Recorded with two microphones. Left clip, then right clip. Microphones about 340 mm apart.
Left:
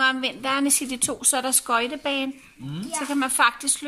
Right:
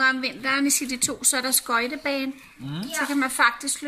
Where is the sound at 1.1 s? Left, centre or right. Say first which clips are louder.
Left 2 dB; centre.